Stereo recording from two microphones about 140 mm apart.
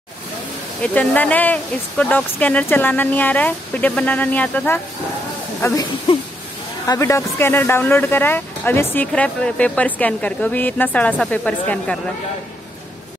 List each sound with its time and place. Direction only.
0.8 s speech: 10° left (ahead or behind)
5.6 s speech: 20° left (ahead or behind)
6.9 s speech: 20° left (ahead or behind)